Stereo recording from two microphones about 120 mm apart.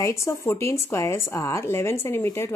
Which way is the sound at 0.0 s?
25° left (ahead or behind).